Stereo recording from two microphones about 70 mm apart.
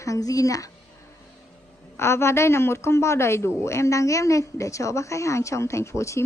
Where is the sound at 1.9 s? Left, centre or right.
Left.